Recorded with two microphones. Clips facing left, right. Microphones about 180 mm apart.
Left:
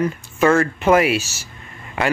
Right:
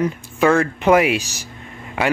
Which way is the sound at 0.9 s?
15° right (ahead or behind).